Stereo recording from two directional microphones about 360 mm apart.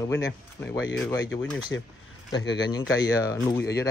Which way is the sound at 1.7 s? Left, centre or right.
Centre.